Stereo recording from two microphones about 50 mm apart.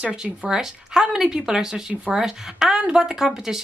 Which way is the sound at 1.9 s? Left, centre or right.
Right.